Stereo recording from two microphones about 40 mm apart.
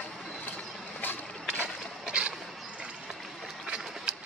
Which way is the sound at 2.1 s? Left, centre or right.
Right.